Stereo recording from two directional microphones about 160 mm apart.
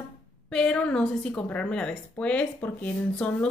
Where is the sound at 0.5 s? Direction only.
5° left (ahead or behind).